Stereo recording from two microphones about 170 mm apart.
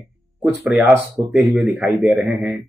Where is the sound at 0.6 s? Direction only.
5° right (ahead or behind).